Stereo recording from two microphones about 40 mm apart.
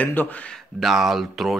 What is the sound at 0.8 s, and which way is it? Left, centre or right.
Speech, centre.